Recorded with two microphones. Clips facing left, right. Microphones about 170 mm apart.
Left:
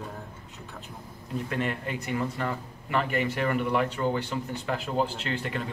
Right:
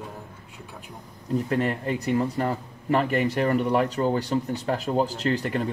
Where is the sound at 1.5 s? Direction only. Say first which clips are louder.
Right 4 dB; 35° right (ahead or behind).